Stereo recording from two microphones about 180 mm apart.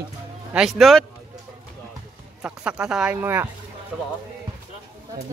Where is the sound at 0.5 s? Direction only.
Centre (ahead or behind).